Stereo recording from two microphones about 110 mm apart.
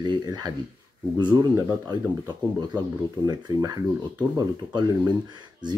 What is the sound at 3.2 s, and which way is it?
Speech, 40° right (ahead or behind).